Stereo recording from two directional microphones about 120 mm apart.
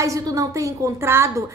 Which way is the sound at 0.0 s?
30° right (ahead or behind).